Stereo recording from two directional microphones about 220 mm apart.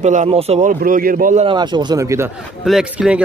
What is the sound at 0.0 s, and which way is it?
A man's voice, 30° right (ahead or behind).